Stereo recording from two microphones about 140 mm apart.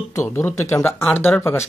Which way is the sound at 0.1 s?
20° left (ahead or behind).